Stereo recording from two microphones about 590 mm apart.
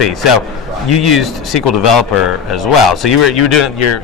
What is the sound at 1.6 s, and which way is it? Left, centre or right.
Speech, left.